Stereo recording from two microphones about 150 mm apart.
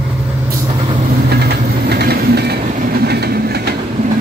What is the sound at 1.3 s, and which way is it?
Train, 90° right.